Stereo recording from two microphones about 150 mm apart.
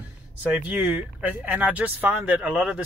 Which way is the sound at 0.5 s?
10° right (ahead or behind).